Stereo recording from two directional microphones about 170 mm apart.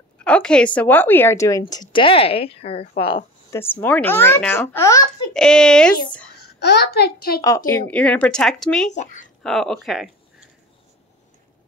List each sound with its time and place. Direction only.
0.2 s a woman's voice: 5° left (ahead or behind); by 2.9 s 35° left (ahead or behind)
3.4 s speech: 15° left (ahead or behind)
5.3 s speech: 5° left (ahead or behind)
6.4 s a child's voice: 70° left (ahead or behind)
7.4 s speech: 15° left (ahead or behind)
8.9 s speech: 45° left (ahead or behind)
9.4 s speech: centre (ahead or behind)